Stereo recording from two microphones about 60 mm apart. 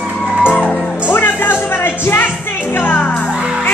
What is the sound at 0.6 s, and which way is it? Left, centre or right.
Music, left.